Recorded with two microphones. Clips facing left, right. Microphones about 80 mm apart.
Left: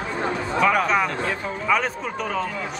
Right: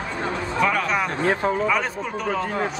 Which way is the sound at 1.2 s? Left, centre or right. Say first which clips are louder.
Right 5 dB; right.